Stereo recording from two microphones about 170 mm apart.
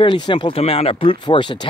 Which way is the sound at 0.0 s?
25° left (ahead or behind).